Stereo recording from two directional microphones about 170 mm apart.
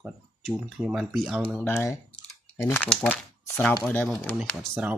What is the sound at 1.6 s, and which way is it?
Speech, 15° left (ahead or behind).